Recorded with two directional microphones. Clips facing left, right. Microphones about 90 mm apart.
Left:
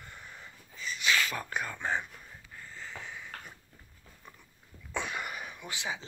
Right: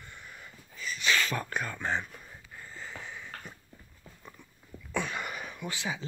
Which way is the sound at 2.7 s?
5° right (ahead or behind).